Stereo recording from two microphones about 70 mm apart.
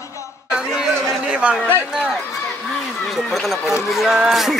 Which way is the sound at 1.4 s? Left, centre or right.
Centre.